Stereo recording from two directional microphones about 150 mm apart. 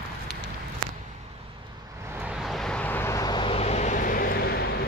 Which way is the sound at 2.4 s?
Centre (ahead or behind).